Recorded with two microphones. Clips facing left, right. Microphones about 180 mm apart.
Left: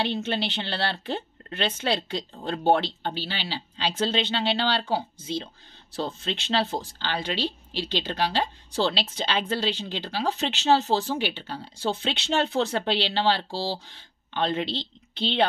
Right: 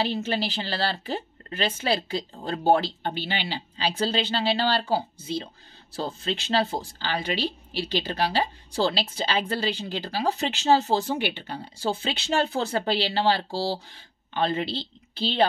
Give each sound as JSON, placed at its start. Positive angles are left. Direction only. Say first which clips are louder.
{"t": 0.0, "sound": "speech", "louder": "right 1 dB", "side_deg": -5}
{"t": 3.2, "sound": "speech", "louder": "right 3 dB", "side_deg": -55}
{"t": 3.4, "sound": "speech", "louder": "right 1 dB", "side_deg": -10}